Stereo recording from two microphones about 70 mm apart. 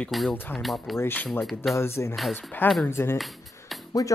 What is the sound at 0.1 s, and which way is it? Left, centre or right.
Speech, centre.